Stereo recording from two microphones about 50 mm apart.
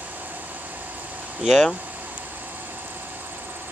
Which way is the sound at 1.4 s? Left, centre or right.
Centre.